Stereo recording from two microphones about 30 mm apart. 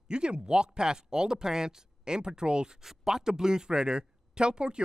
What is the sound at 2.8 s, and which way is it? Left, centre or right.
Speech, centre.